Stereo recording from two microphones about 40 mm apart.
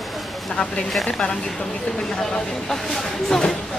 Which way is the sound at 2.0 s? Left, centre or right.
Centre.